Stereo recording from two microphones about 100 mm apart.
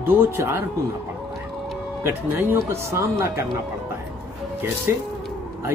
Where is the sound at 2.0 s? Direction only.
20° right (ahead or behind).